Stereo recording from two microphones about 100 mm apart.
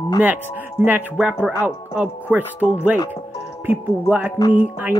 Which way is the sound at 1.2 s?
10° right (ahead or behind).